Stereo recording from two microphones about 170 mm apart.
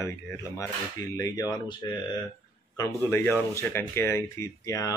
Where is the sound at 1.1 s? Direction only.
20° left (ahead or behind).